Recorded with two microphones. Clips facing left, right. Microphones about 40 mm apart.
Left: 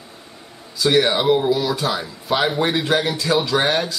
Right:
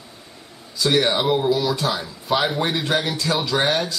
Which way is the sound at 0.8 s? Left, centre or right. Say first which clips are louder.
Left 2 dB; centre.